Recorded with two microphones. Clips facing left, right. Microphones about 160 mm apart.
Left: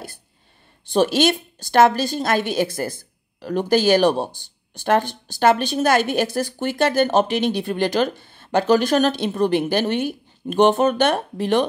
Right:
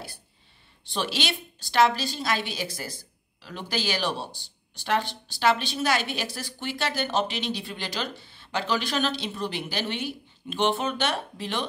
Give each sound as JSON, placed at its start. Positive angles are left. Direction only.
{"t": 0.9, "sound": "a woman's voice", "side_deg": 45}